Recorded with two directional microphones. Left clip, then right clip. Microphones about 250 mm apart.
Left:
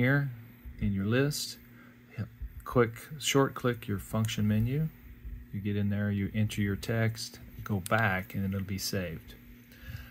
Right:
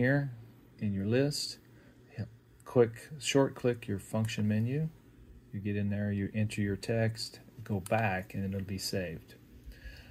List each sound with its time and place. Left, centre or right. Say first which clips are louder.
0.0 s speech: left 1 dB; left
1.3 s speech: even; left
2.1 s speech: left 2 dB; left